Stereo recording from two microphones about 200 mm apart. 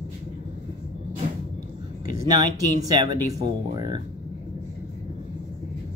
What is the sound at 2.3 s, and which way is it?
Speech, 20° right (ahead or behind).